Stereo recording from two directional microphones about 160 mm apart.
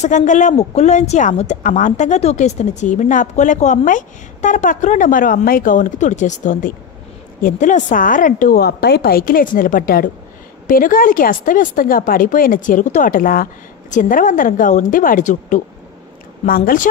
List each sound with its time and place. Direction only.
0.0 s speech: 50° left (ahead or behind)
8.5 s a woman's voice: 90° left; by 15.6 s 55° left (ahead or behind)
16.4 s speech: 65° left (ahead or behind)